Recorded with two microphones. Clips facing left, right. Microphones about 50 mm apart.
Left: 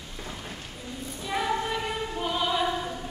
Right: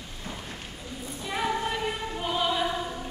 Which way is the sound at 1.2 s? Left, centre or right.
Centre.